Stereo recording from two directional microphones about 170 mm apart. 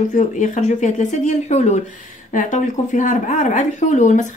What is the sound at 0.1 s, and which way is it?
Speech, 45° left (ahead or behind).